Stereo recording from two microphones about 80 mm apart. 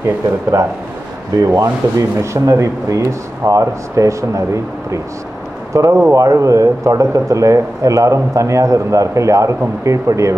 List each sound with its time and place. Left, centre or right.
0.0 s speech: right
5.7 s speech: right